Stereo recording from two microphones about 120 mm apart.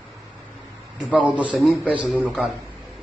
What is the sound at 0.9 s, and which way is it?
A man's voice, 10° right (ahead or behind).